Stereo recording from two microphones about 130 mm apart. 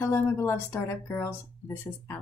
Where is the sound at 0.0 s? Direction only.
15° left (ahead or behind).